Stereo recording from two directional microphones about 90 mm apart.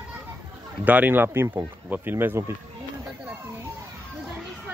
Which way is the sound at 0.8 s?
20° right (ahead or behind).